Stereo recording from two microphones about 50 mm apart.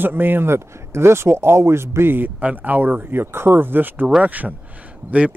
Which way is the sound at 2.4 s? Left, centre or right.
Right.